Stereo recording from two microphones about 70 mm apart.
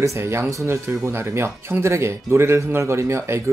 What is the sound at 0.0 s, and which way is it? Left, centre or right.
Speech, right.